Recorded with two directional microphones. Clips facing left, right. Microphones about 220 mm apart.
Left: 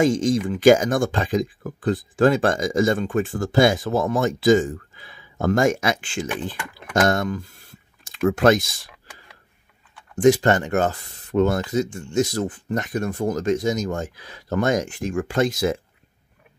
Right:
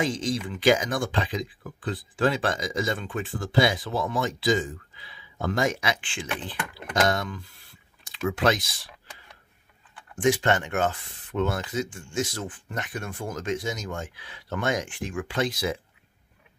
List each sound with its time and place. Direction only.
0.0 s speech: 45° left (ahead or behind)
10.1 s speech: 40° left (ahead or behind)